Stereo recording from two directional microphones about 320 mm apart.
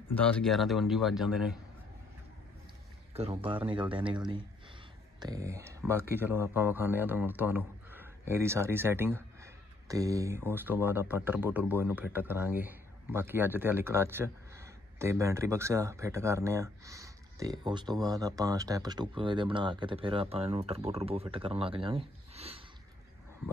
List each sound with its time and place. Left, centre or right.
0.1 s a man's voice: centre
3.1 s a man's voice: centre